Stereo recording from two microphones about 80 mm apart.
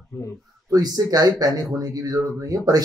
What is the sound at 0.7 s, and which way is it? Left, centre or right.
Speech, right.